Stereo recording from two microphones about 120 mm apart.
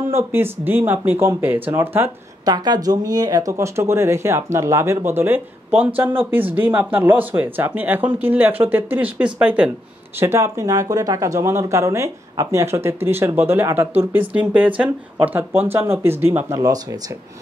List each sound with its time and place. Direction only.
0.1 s a man's voice: 20° right (ahead or behind)
2.4 s a man's voice: 35° right (ahead or behind); by 9.7 s 10° right (ahead or behind)
10.1 s a man's voice: 25° right (ahead or behind)